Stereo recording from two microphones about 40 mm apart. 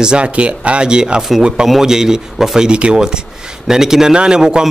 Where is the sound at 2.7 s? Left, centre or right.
Right.